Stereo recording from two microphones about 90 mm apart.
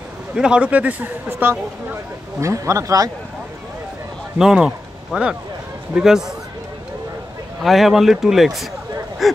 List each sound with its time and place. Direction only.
0.3 s speech: 10° right (ahead or behind)
2.4 s speech: 35° right (ahead or behind)
4.4 s speech: 10° right (ahead or behind)
7.6 s speech: centre (ahead or behind)
9.2 s a sound: centre (ahead or behind)